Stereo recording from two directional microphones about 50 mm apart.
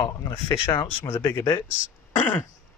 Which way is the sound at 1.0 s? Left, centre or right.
Left.